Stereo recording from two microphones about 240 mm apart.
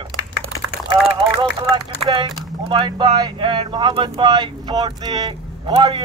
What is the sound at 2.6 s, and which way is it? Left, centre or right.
Speech, centre.